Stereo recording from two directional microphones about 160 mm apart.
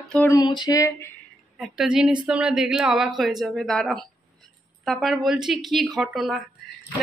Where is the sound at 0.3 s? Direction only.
25° left (ahead or behind).